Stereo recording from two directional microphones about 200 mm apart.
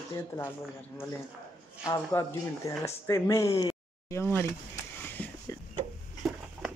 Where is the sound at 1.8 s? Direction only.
15° left (ahead or behind).